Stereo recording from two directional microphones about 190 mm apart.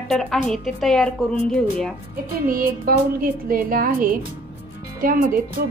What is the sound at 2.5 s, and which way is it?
Speech, 50° right (ahead or behind).